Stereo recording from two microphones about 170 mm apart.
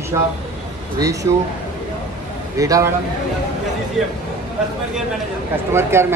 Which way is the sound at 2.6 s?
20° right (ahead or behind).